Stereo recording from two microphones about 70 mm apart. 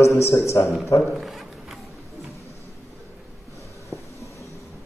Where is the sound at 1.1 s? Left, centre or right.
Centre.